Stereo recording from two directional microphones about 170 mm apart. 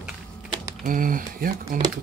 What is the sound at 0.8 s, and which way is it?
Speech, 55° right (ahead or behind).